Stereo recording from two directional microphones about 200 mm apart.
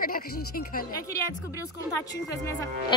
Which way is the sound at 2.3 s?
15° left (ahead or behind).